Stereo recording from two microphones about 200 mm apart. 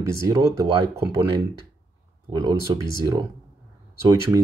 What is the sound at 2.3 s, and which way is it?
Speech, 20° right (ahead or behind).